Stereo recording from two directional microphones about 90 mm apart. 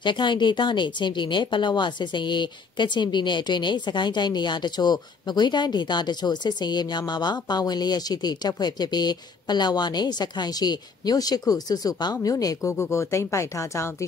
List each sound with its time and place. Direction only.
0.0 s speech: 60° left (ahead or behind); by 12.7 s 40° left (ahead or behind)
12.7 s speech: 30° left (ahead or behind)